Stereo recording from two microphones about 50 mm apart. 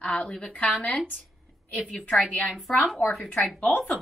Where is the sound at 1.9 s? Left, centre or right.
Centre.